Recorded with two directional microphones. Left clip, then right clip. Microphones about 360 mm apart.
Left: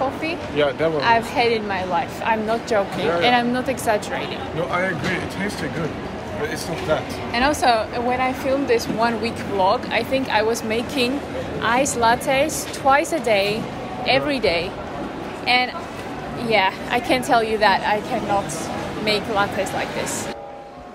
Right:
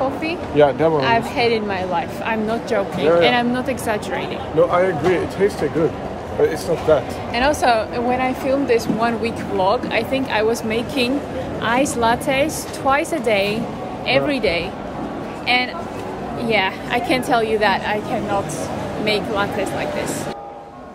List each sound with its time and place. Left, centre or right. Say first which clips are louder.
0.6 s speech: right 6 dB; right
0.9 s speech: even; centre
4.6 s speech: right 6 dB; centre
6.9 s speech: right 5 dB; centre